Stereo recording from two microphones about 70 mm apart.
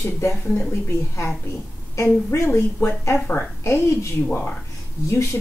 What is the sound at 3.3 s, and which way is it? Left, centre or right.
Speech, left.